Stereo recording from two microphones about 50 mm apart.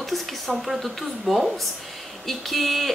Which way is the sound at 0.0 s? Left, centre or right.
Centre.